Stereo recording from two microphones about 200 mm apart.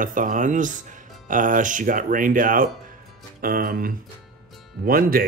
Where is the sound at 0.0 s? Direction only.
40° right (ahead or behind).